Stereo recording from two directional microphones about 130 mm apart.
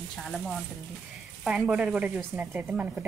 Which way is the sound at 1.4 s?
10° right (ahead or behind).